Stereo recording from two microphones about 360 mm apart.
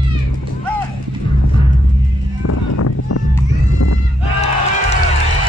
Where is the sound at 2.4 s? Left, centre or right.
Left.